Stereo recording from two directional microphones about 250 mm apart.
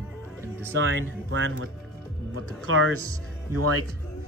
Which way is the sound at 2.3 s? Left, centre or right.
Right.